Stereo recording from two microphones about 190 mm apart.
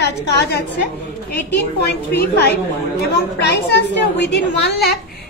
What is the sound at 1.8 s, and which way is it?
Speech, 55° left (ahead or behind).